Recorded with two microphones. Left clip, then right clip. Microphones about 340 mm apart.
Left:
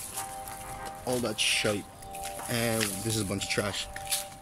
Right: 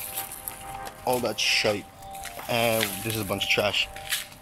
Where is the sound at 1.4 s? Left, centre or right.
Centre.